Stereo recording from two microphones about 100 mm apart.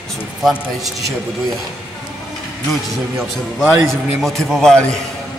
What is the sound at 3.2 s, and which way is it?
A man's voice, centre (ahead or behind).